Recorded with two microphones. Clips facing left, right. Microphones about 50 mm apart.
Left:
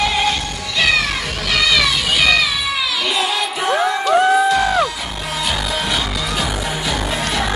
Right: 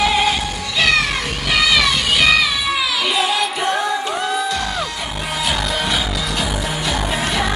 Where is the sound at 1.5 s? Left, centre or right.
Centre.